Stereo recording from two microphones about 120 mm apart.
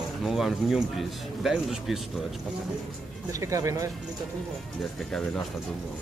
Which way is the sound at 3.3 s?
25° right (ahead or behind).